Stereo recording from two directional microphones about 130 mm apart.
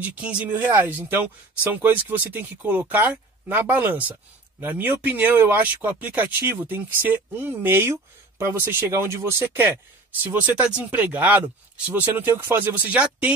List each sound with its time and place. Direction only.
0.0 s speech: 10° right (ahead or behind)